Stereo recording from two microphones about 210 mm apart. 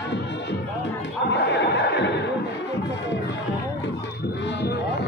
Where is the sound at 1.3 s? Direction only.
55° left (ahead or behind).